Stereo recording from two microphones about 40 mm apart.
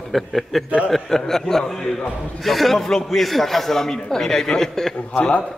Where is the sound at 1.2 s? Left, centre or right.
Centre.